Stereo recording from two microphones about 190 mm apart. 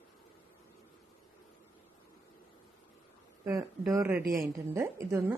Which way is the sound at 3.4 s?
15° right (ahead or behind).